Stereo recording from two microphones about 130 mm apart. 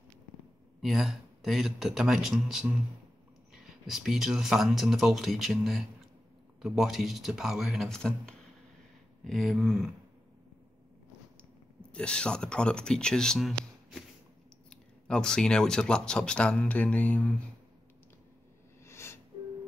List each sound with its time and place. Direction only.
0.7 s speech: centre (ahead or behind)
11.9 s speech: 5° left (ahead or behind)
18.9 s music: 20° left (ahead or behind)